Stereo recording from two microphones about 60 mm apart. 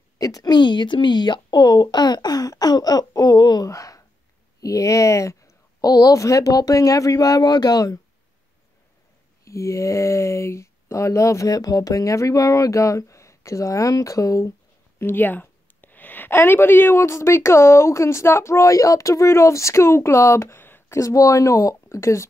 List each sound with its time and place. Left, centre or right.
0.2 s a woman's voice: left
1.7 s speech: left
9.4 s speech: left
15.0 s a sound: left
16.3 s a woman's voice: left
20.5 s a sound: left
21.0 s speech: left